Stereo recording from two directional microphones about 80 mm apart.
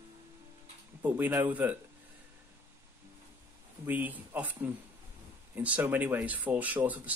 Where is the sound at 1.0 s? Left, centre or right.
Right.